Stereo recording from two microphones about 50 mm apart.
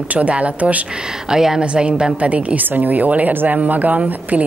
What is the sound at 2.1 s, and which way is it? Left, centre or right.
A woman's voice, right.